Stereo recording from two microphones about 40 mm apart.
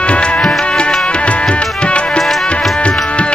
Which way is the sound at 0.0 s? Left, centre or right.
Left.